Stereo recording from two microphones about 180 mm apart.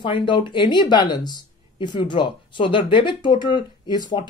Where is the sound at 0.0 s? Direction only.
25° left (ahead or behind).